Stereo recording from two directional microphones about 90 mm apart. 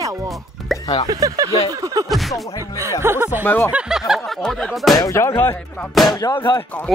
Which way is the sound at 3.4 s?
20° left (ahead or behind).